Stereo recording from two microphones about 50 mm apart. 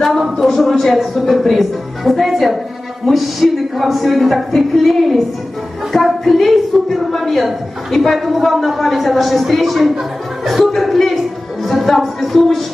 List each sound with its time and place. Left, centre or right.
0.4 s a woman's voice: centre